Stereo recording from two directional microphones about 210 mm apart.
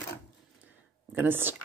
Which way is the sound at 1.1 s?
10° right (ahead or behind).